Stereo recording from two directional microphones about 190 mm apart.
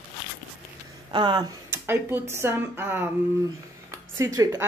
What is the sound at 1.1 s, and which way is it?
Speech, 25° right (ahead or behind).